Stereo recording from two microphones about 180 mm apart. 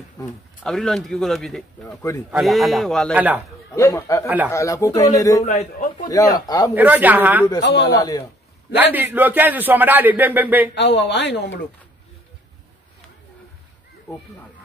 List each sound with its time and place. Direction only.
0.7 s speech: centre (ahead or behind)
2.0 s speech: 15° left (ahead or behind)
2.3 s speech: centre (ahead or behind)
3.2 s speech: 10° right (ahead or behind)
3.7 s speech: 15° left (ahead or behind)
5.4 s a man's voice: 40° left (ahead or behind)
6.0 s speech: 20° left (ahead or behind)
6.7 s speech: 10° right (ahead or behind)
7.6 s speech: 70° left (ahead or behind)
8.9 s speech: 10° right (ahead or behind)
10.7 s speech: 70° left (ahead or behind)